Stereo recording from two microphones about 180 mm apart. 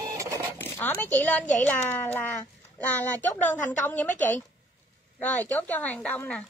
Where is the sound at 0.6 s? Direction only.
10° left (ahead or behind).